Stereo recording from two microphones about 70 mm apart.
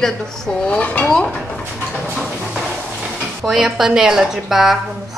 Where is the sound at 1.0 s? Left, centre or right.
Centre.